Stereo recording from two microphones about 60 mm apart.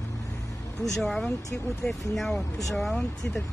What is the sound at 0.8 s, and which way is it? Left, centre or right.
Speech, centre.